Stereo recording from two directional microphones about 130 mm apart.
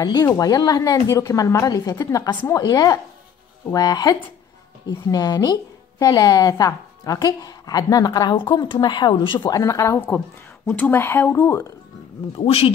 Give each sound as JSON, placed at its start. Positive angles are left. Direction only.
{"t": 0.0, "sound": "a woman's voice", "side_deg": 30}
{"t": 9.5, "sound": "a woman's voice", "side_deg": 25}
{"t": 12.4, "sound": "speech", "side_deg": 50}